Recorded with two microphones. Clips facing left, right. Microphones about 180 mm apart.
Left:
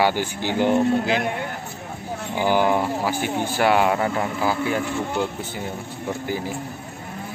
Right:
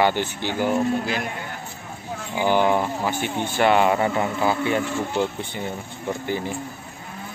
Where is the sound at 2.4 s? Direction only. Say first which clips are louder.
Even; 10° left (ahead or behind).